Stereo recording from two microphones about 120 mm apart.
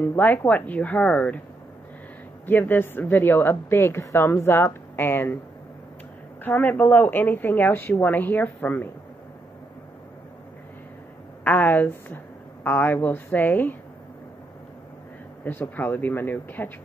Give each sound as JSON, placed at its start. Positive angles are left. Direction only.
{"t": 0.0, "sound": "a woman's voice", "side_deg": 15}
{"t": 2.4, "sound": "a woman's voice", "side_deg": 15}
{"t": 6.4, "sound": "a woman's voice", "side_deg": 15}
{"t": 11.4, "sound": "a woman's voice", "side_deg": 15}
{"t": 15.4, "sound": "a woman's voice", "side_deg": 15}